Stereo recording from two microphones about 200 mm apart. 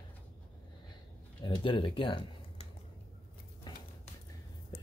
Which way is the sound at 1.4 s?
25° left (ahead or behind).